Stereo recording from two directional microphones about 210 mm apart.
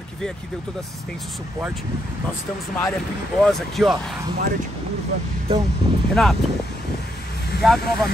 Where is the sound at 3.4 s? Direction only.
Centre (ahead or behind).